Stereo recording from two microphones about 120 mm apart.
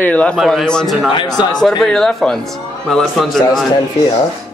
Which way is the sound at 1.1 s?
40° left (ahead or behind).